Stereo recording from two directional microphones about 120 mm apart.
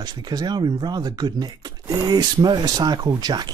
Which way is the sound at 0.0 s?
35° right (ahead or behind).